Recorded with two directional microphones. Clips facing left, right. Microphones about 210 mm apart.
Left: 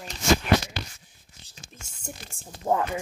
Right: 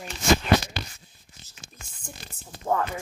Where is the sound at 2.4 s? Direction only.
20° left (ahead or behind).